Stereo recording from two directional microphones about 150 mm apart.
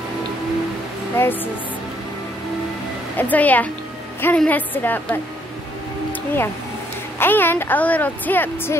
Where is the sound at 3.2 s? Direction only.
10° left (ahead or behind).